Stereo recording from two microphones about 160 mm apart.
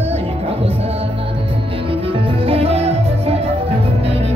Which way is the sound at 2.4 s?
40° right (ahead or behind).